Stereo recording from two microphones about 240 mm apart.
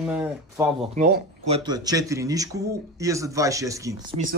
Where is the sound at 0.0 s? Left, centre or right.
Centre.